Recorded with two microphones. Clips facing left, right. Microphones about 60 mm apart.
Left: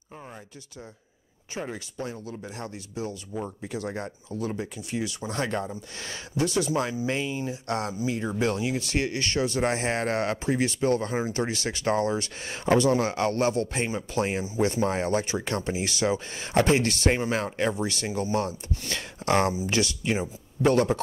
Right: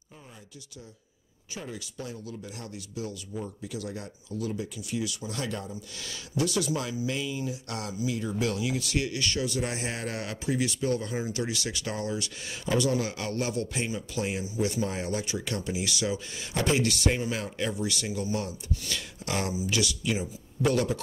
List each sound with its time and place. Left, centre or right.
1.5 s speech: left